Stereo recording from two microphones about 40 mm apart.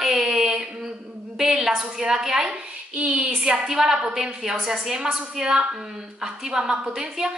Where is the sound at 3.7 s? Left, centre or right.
Centre.